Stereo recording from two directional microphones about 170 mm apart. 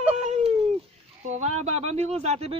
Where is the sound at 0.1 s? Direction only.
40° right (ahead or behind).